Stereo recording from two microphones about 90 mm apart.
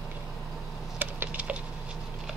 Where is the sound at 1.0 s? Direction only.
15° right (ahead or behind).